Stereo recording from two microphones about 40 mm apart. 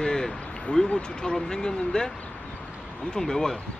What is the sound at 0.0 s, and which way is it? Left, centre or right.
Speech, centre.